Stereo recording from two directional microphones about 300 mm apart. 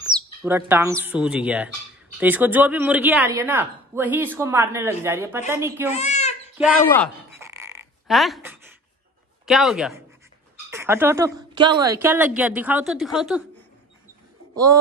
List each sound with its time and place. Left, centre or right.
0.4 s a woman's voice: centre
5.9 s a sound: left
6.6 s speech: centre
7.3 s dog: centre
9.5 s a woman's voice: centre
14.5 s speech: centre